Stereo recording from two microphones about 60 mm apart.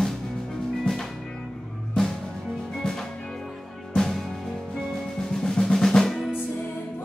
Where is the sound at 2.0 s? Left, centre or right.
Centre.